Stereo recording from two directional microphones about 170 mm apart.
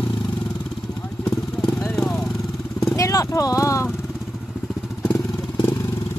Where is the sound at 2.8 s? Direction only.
20° left (ahead or behind).